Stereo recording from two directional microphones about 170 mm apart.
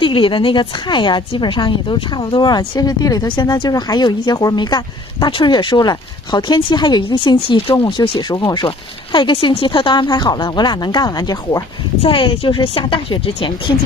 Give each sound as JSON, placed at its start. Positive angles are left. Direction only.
{"t": 0.0, "sound": "a woman's voice", "side_deg": 30}
{"t": 12.0, "sound": "speech", "side_deg": 30}